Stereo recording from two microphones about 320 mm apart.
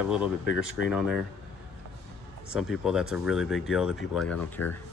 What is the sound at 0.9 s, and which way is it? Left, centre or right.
Speech, centre.